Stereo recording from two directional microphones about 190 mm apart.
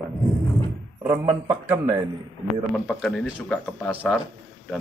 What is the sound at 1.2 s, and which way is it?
Speech, 30° right (ahead or behind).